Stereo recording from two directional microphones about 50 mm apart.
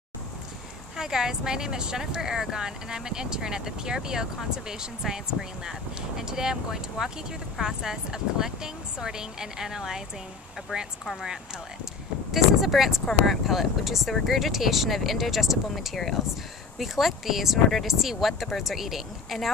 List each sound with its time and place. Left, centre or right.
0.9 s a woman's voice: centre
11.1 s speech: centre